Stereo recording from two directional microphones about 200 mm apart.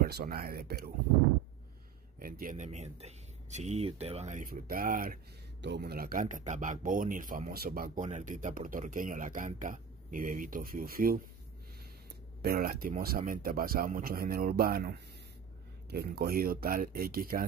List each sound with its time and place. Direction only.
0.0 s speech: 50° right (ahead or behind)
2.1 s speech: 45° right (ahead or behind)
5.6 s speech: 55° right (ahead or behind)
12.4 s speech: 50° right (ahead or behind)